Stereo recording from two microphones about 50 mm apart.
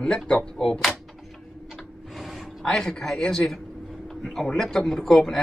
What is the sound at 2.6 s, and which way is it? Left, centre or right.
A man's voice, centre.